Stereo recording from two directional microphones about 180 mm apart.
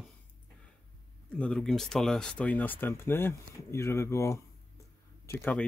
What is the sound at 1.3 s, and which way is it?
Speech, 5° left (ahead or behind).